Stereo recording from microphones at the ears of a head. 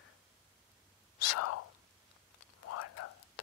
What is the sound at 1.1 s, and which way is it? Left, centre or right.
Whispering, left.